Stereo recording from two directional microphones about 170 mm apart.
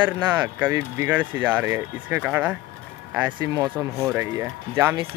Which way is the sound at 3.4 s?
20° right (ahead or behind).